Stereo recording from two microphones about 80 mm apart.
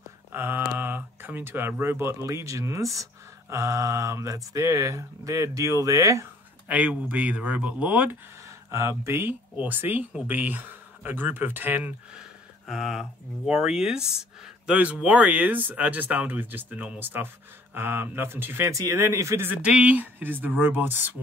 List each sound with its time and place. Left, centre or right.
0.3 s speech: right
6.7 s speech: centre
8.6 s speech: right
12.2 s speech: centre; by 18.7 s right
18.7 s speech: right
19.6 s speech: centre